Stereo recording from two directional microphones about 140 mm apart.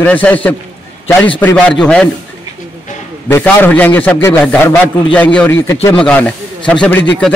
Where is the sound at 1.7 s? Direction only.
5° left (ahead or behind).